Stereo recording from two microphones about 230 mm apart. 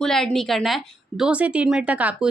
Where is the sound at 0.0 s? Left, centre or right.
Centre.